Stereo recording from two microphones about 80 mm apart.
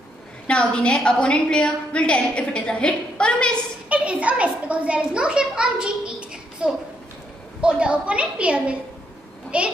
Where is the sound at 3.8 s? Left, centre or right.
Centre.